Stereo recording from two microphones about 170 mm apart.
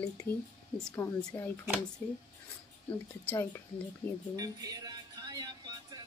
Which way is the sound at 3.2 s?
15° left (ahead or behind).